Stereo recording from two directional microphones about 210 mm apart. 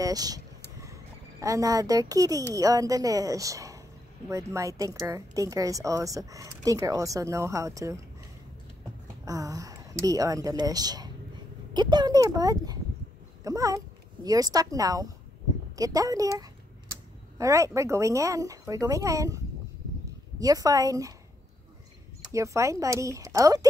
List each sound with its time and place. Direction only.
0.0 s vehicle: 15° right (ahead or behind)
1.4 s speech: 15° right (ahead or behind)
9.0 s a child's voice: 15° right (ahead or behind)
22.3 s speech: 15° right (ahead or behind)